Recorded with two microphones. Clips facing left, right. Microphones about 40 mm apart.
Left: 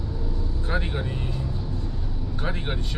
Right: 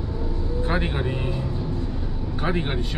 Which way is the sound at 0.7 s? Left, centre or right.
Right.